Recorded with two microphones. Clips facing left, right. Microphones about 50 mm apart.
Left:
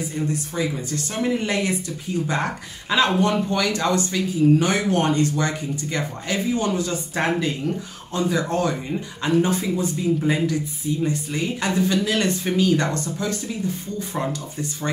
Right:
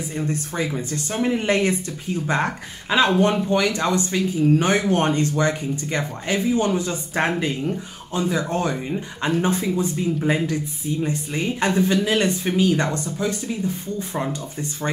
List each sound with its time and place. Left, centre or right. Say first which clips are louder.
0.6 s speech: left 1 dB; right
14.1 s speech: even; centre